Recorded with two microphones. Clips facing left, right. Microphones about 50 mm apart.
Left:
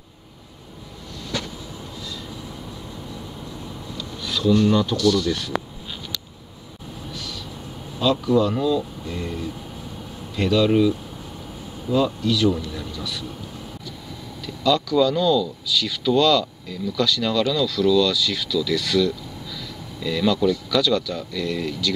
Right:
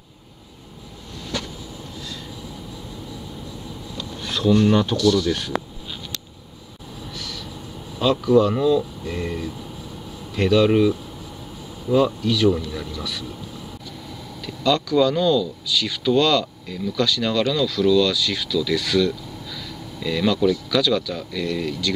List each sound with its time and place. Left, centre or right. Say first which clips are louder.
4.0 s a sound: right 1 dB; right
4.9 s speech: right 1 dB; centre
8.1 s speech: right 3 dB; centre
9.0 s speech: right 2 dB; right
10.3 s speech: right 3 dB; centre
11.9 s speech: right 2 dB; right
14.4 s speech: even; centre